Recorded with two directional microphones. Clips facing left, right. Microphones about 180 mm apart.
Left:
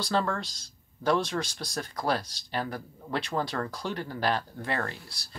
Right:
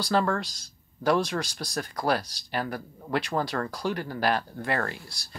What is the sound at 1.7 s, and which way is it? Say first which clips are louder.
Speech: right 2 dB; centre (ahead or behind).